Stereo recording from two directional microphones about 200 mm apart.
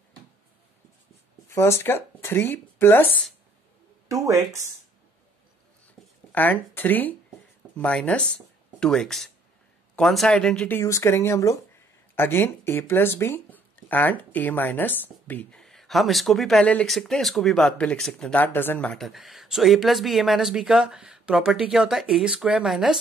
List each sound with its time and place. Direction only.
1.5 s speech: 15° left (ahead or behind)
4.1 s speech: 15° right (ahead or behind)
6.0 s a sound: centre (ahead or behind)
6.3 s speech: 10° left (ahead or behind)